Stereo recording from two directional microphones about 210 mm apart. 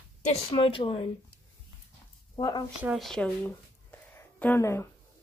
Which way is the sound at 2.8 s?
Centre (ahead or behind).